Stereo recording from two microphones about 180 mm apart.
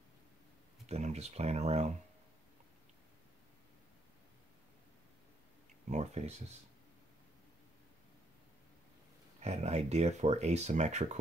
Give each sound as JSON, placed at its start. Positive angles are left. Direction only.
{"t": 0.8, "sound": "speech", "side_deg": -35}
{"t": 5.9, "sound": "speech", "side_deg": -40}
{"t": 9.4, "sound": "speech", "side_deg": -35}